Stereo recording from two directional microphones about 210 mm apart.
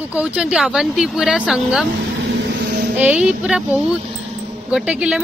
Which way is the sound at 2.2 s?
45° right (ahead or behind).